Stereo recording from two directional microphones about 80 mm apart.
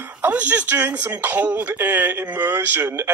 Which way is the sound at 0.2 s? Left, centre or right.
Right.